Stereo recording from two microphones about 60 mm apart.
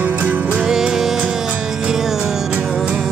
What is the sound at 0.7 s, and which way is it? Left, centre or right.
Music, centre.